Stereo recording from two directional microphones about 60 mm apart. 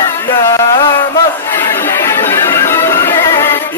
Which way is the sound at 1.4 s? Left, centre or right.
Left.